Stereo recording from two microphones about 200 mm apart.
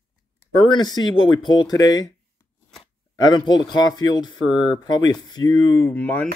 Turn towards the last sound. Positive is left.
turn(degrees=10)  # may be behind; listen again after turning